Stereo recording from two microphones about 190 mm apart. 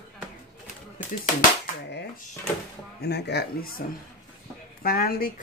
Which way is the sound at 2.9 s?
60° left (ahead or behind).